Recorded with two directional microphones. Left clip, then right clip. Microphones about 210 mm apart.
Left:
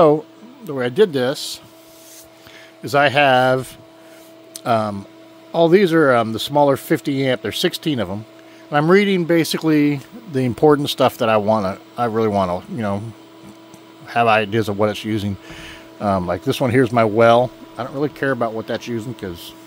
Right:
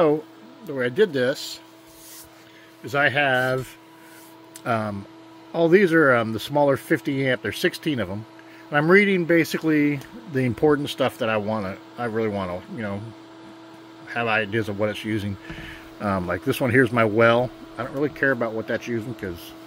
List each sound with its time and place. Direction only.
0.7 s speech: 30° left (ahead or behind)
2.8 s speech: 30° left (ahead or behind)
4.6 s speech: 25° left (ahead or behind)
14.1 s speech: 30° left (ahead or behind)
16.0 s speech: 15° left (ahead or behind)